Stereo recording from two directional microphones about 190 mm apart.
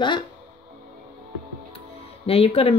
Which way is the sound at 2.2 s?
30° left (ahead or behind).